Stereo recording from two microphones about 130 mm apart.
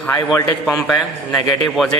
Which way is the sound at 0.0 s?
10° left (ahead or behind).